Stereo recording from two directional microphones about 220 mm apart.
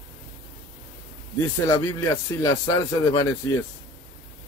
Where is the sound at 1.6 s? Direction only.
15° left (ahead or behind).